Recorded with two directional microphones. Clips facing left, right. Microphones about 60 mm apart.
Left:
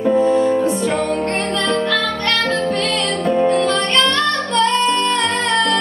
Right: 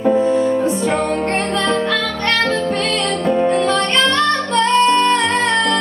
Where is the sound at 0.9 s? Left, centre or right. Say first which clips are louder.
Right 1 dB; right.